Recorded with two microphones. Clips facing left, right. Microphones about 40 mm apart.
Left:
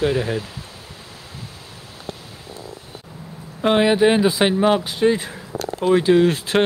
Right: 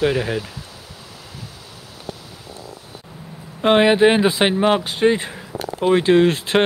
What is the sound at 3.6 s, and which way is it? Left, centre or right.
Speech, right.